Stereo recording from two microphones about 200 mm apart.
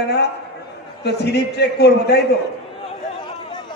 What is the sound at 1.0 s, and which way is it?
A man's voice, 55° left (ahead or behind).